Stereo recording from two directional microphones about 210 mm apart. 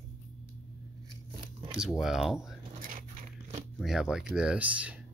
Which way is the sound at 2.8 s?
40° right (ahead or behind).